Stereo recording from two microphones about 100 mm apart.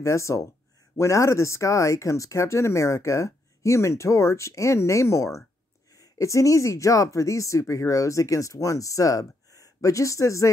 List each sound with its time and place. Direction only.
0.0 s speech: 30° left (ahead or behind)